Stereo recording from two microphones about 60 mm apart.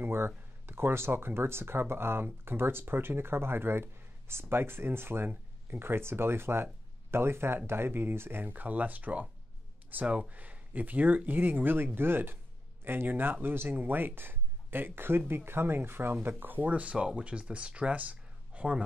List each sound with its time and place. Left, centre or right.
0.0 s speech: right